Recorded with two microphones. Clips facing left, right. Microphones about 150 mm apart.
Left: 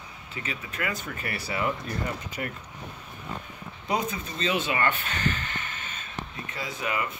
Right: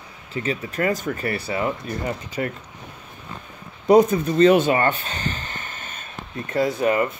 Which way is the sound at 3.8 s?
45° right (ahead or behind).